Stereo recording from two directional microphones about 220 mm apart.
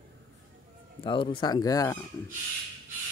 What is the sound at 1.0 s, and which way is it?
Speech, 25° left (ahead or behind).